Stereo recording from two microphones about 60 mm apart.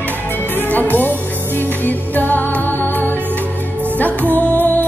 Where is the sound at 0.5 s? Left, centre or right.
Left.